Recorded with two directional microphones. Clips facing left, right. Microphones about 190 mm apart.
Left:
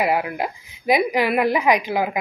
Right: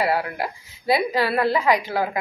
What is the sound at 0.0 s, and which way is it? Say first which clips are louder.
A woman's voice: left 2 dB; 15° left (ahead or behind).